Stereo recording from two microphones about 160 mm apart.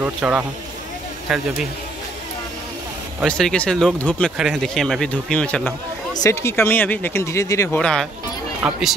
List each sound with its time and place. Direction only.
0.0 s speech: 10° right (ahead or behind)
3.3 s speech: 5° left (ahead or behind)
6.1 s speech: 20° left (ahead or behind)
7.8 s speech: 5° left (ahead or behind)